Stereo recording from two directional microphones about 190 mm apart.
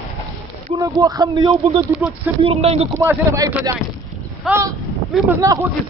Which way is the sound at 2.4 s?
30° right (ahead or behind).